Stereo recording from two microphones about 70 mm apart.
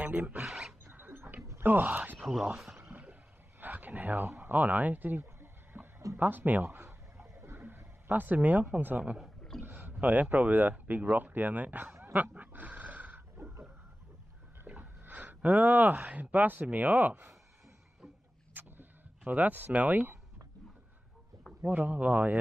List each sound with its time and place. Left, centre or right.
0.0 s speech: right
0.5 s dog: centre
0.9 s tick-tock: right
1.6 s speech: right
2.8 s a sound: right
9.6 s speech: right
12.0 s dog: right
14.8 s a sound: right
16.2 s speech: right
18.5 s a sound: right
21.6 s speech: right